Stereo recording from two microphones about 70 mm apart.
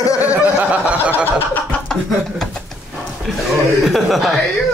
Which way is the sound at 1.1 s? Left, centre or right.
Left.